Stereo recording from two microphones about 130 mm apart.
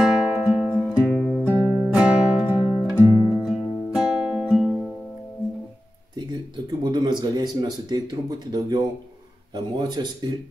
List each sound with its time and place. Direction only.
0.0 s music: 5° right (ahead or behind)
1.0 s music: 10° left (ahead or behind)
1.4 s music: 20° right (ahead or behind)
2.0 s music: 10° right (ahead or behind)
2.9 s music: centre (ahead or behind)
6.8 s a sound: 35° right (ahead or behind)
8.5 s speech: 30° right (ahead or behind)